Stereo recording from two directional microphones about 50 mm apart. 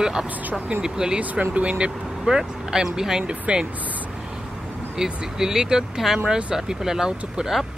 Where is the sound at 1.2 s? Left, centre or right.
Right.